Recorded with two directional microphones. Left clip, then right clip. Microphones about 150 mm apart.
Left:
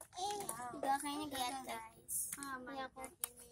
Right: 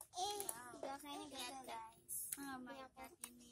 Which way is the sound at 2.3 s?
30° right (ahead or behind).